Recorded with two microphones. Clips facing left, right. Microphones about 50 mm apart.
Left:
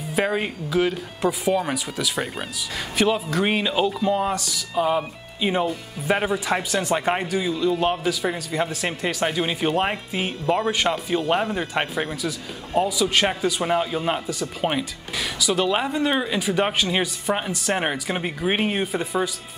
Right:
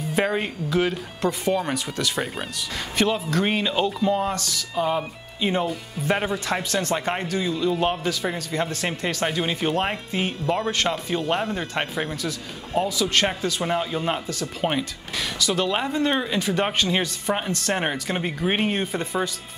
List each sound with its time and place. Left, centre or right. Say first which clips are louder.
0.1 s a man's voice: left 1 dB; centre
7.5 s a man's voice: left 1 dB; centre